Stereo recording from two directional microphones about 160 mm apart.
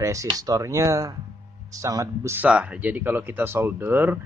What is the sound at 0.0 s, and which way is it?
Speech, 20° right (ahead or behind).